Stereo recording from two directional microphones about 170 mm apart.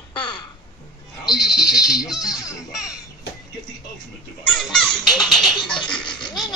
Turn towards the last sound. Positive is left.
turn(degrees=5)  # may be behind; listen again after turning